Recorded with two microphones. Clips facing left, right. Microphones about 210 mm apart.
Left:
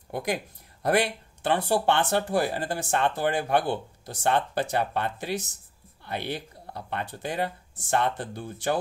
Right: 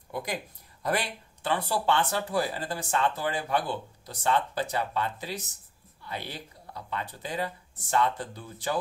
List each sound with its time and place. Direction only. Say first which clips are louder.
0.1 s speech: left 4 dB; 65° left (ahead or behind)